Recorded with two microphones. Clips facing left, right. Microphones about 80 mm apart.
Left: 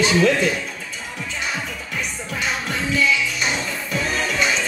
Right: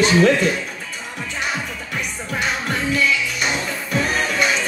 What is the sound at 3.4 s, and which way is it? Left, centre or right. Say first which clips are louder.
Music: right 1 dB; right.